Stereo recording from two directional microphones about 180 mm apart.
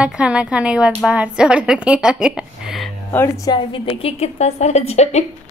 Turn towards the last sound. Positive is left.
turn(degrees=35)  # may be behind; listen again after turning